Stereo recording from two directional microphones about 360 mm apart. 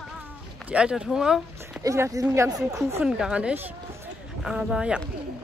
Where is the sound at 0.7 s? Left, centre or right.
Centre.